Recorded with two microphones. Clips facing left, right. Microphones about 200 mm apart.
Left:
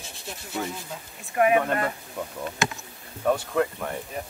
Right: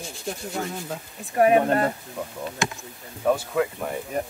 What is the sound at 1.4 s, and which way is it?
Speech, 35° right (ahead or behind).